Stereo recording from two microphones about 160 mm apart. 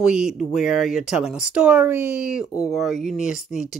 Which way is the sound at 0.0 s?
5° right (ahead or behind).